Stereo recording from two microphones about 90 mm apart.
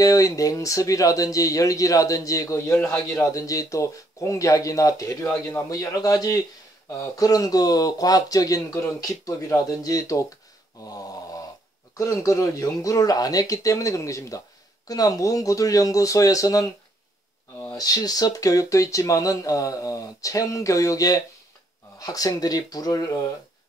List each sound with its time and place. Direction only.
0.0 s speech: 40° left (ahead or behind)
10.8 s a sound: 40° left (ahead or behind)
12.0 s speech: 35° left (ahead or behind)
17.7 s speech: 45° left (ahead or behind)